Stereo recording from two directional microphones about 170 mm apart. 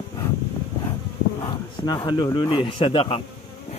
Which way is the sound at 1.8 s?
25° left (ahead or behind).